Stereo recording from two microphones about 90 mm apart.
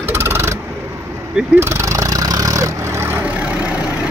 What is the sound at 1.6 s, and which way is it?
Vehicle, 30° right (ahead or behind).